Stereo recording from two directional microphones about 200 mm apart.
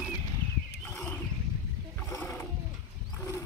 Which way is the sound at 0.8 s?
10° left (ahead or behind).